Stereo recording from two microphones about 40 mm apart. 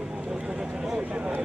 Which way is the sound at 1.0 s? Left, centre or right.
Right.